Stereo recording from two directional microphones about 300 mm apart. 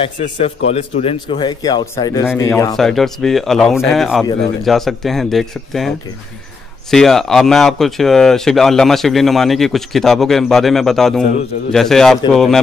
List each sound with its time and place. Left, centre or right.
0.0 s a man's voice: left; by 12.5 s centre